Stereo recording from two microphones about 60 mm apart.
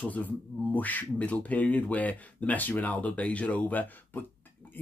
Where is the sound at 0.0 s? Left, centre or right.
Left.